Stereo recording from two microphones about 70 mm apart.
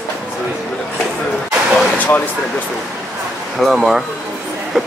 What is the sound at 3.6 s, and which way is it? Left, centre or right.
Speech, centre.